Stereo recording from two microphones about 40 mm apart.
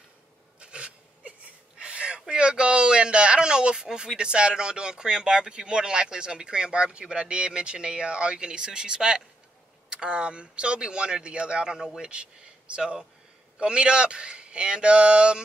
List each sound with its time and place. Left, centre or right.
0.6 s a sound: right
2.2 s speech: right
12.1 s speech: right